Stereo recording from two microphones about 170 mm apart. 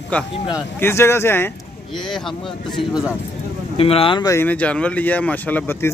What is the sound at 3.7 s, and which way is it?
Speech, 35° left (ahead or behind).